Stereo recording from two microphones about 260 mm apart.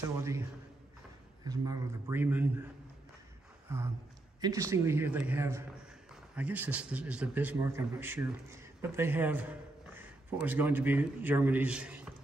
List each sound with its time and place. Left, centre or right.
1.4 s a man's voice: centre
3.6 s a sound: centre
4.4 s a man's voice: centre